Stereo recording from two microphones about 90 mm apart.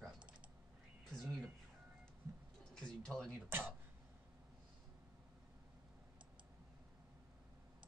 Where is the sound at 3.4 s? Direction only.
25° right (ahead or behind).